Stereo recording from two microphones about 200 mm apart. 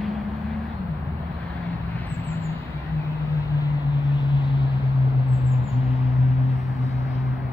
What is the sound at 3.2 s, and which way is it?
Vehicle, 15° left (ahead or behind).